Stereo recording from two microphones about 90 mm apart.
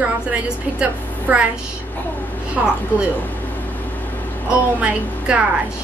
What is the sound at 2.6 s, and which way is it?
Speech, 15° right (ahead or behind).